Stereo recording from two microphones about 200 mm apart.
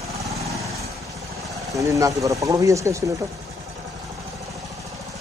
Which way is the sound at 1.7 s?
15° right (ahead or behind).